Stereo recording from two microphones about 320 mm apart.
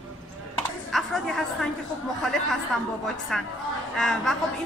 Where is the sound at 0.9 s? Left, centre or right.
Centre.